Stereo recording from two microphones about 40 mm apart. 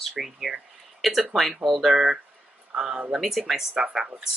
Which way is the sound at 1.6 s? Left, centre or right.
Centre.